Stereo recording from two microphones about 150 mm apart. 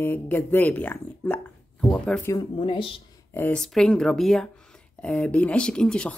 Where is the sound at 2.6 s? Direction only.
35° left (ahead or behind).